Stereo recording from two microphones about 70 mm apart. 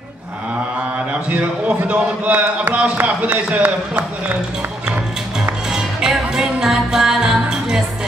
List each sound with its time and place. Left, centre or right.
1.9 s speech: right
5.7 s music: centre